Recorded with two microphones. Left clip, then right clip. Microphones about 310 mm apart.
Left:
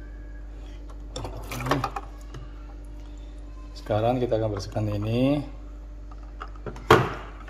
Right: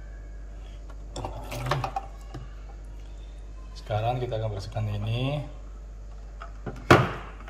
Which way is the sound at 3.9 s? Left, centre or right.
Centre.